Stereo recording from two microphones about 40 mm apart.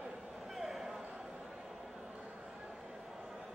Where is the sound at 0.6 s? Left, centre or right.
Centre.